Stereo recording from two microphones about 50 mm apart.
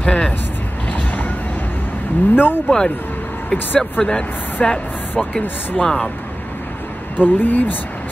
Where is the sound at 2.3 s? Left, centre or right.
Left.